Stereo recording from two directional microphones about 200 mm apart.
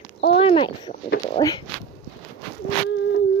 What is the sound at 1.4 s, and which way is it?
Speech, 25° left (ahead or behind).